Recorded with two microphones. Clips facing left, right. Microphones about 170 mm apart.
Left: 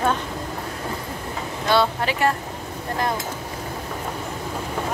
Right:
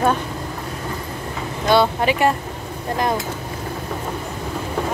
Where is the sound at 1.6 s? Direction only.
15° right (ahead or behind).